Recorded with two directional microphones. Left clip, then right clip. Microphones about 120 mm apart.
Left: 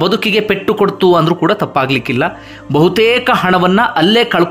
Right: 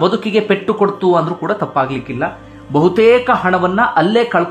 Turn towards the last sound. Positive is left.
turn(degrees=30)  # may be behind; listen again after turning